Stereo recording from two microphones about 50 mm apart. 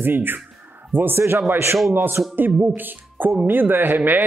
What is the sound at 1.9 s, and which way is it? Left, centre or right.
Speech, right.